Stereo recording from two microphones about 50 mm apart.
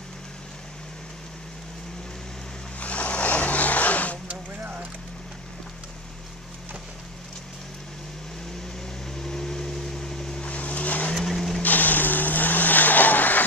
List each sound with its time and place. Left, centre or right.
2.8 s vehicle: left
4.3 s vehicle: right
9.2 s vehicle: centre
10.4 s vehicle: left
11.1 s vehicle: centre
11.6 s vehicle: left